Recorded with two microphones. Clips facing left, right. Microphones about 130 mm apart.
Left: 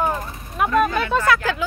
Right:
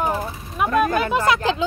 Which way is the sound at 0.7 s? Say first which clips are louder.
Even; 45° right (ahead or behind).